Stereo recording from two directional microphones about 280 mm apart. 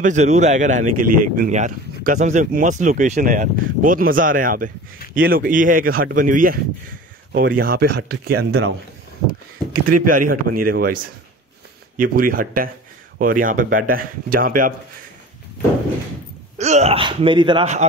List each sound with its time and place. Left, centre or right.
0.0 s a man's voice: right
9.7 s speech: right
10.0 s a man's voice: right
12.0 s a man's voice: right
16.5 s speech: right